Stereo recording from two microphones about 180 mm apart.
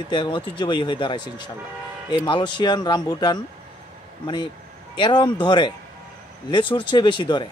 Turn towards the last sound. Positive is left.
turn(degrees=25)  # may be behind; listen again after turning